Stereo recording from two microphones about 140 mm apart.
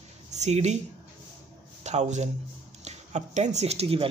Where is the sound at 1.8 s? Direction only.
55° right (ahead or behind).